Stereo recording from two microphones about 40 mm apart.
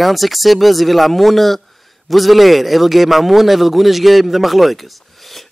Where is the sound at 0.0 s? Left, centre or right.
Centre.